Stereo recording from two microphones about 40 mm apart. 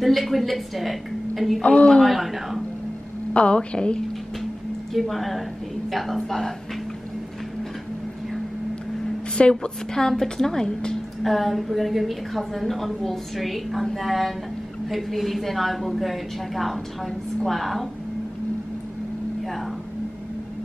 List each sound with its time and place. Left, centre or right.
0.0 s a woman's voice: centre
1.6 s a woman's voice: left
2.0 s a woman's voice: centre
3.3 s a woman's voice: left
4.9 s a woman's voice: centre
9.4 s a woman's voice: left
11.2 s a woman's voice: centre